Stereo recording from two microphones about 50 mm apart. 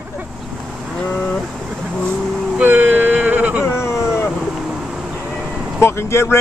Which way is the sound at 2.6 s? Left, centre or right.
Right.